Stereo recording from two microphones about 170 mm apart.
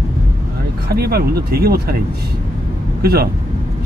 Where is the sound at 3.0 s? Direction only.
65° right (ahead or behind).